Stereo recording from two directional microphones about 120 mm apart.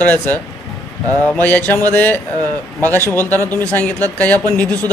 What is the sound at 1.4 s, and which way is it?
A man's voice, 15° left (ahead or behind).